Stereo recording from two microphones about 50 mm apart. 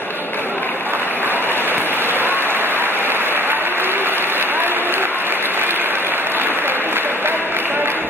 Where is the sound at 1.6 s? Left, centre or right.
Right.